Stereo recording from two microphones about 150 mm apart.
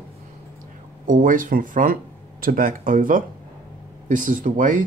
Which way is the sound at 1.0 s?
60° right (ahead or behind).